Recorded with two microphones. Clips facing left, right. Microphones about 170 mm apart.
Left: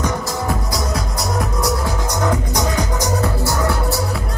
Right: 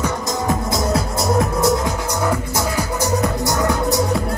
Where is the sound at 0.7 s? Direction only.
Centre (ahead or behind); by 4.0 s 15° right (ahead or behind).